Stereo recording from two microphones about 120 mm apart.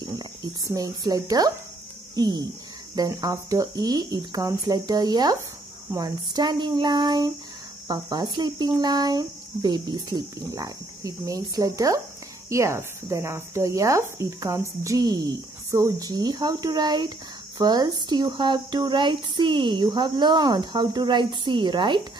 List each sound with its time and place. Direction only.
0.0 s speech: 35° right (ahead or behind)